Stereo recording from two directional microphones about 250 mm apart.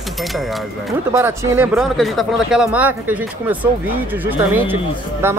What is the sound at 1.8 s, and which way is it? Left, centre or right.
Speech, centre.